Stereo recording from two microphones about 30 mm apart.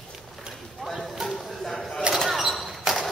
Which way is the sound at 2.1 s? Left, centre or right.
Right.